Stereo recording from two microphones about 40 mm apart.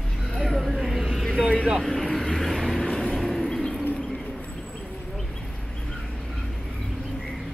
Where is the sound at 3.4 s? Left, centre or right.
Centre.